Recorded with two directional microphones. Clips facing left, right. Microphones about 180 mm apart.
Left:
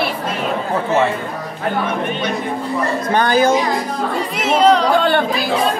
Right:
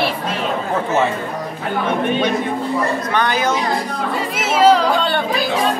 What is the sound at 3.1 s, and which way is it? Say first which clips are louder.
Speech: left 7 dB; 35° left (ahead or behind).